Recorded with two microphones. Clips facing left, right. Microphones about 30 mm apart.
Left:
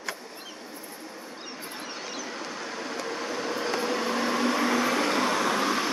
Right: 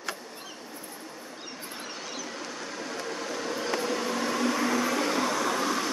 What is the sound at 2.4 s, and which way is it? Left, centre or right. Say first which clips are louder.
Mouse: left 2 dB; centre.